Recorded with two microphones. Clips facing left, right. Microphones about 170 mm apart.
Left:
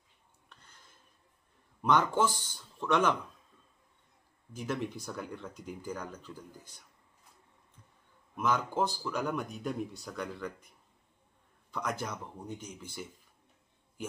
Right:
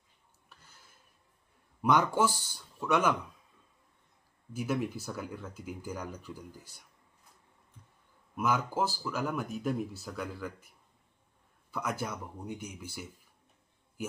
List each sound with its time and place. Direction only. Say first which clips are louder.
0.5 s a sound: even; 5° right (ahead or behind)
1.8 s speech: right 1 dB; 10° right (ahead or behind)
4.6 s speech: right 3 dB; 10° right (ahead or behind)
8.4 s speech: even; 5° right (ahead or behind)
11.7 s speech: right 1 dB; 5° right (ahead or behind)